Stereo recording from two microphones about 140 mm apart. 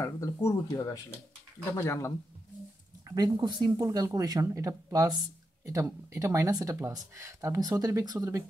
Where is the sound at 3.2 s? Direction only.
30° right (ahead or behind).